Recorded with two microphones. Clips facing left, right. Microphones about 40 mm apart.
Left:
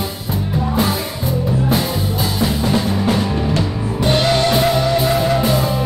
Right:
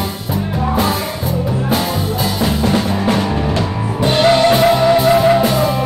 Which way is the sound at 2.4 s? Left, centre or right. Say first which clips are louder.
Right 1 dB; centre.